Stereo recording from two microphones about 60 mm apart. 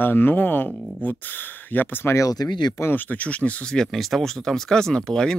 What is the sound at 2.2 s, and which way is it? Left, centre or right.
Speech, left.